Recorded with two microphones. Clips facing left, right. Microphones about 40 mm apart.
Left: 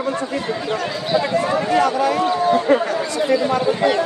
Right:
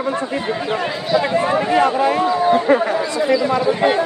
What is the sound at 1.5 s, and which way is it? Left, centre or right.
Speech, right.